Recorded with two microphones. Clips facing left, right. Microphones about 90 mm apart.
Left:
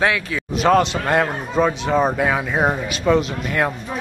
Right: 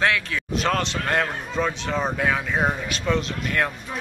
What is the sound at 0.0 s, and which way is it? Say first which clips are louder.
A man's voice: left 3 dB; 5° left (ahead or behind).